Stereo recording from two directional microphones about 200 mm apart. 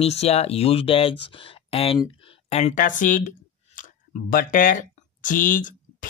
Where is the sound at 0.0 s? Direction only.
30° left (ahead or behind).